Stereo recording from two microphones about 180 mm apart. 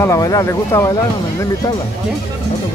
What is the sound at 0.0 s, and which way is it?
Speech, 20° left (ahead or behind).